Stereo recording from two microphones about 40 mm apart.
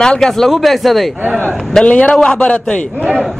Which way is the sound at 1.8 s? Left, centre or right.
Left.